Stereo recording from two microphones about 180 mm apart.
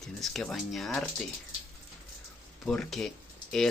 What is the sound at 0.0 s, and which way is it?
Speech, 5° left (ahead or behind).